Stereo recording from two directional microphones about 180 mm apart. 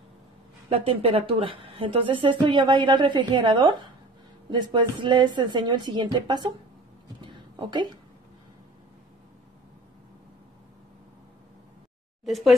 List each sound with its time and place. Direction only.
0.7 s a woman's voice: 35° right (ahead or behind)
7.2 s a sound: 25° right (ahead or behind)
12.3 s speech: centre (ahead or behind)